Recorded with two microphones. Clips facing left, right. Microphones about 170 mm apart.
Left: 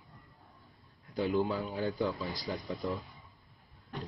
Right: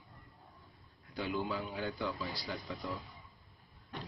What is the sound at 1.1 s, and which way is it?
A man's voice, 40° left (ahead or behind).